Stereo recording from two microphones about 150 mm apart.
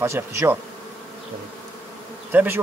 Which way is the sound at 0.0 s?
15° right (ahead or behind).